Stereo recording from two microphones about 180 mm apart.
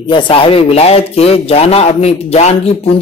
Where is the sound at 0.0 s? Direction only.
25° left (ahead or behind).